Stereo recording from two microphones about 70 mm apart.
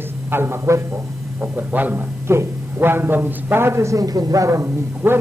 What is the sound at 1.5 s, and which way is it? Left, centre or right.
A man's voice, right.